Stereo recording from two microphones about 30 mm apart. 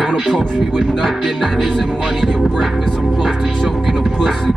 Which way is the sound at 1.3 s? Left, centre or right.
Centre.